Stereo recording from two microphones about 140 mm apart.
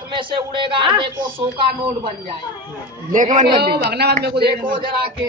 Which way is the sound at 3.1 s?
60° right (ahead or behind).